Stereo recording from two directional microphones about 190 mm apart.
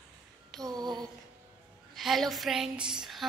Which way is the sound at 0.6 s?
20° right (ahead or behind).